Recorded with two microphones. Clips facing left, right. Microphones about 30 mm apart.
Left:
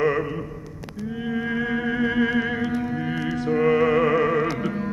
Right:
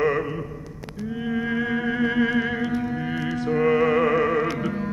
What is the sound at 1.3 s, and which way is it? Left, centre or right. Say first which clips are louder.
Music: even; centre.